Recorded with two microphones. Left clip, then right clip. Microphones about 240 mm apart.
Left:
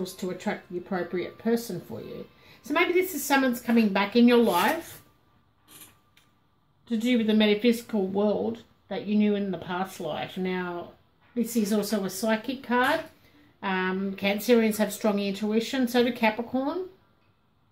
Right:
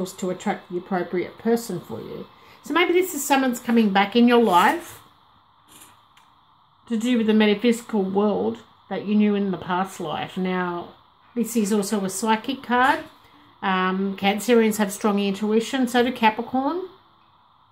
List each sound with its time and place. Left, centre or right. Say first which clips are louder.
0.0 s speech: right 5 dB; right
6.9 s speech: right 4 dB; right